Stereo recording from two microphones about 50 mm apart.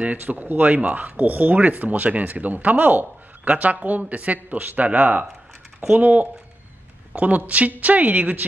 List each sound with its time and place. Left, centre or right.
0.0 s speech: right